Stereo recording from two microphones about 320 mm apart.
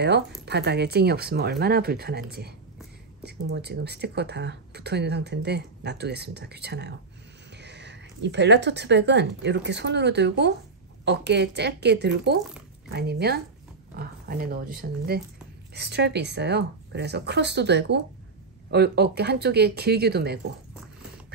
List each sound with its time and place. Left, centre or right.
0.5 s speech: right
3.3 s speech: right